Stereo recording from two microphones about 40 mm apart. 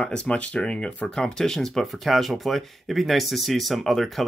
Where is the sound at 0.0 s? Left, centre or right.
Left.